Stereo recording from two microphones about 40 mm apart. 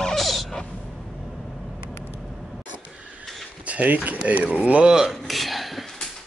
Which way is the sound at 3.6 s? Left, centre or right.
Right.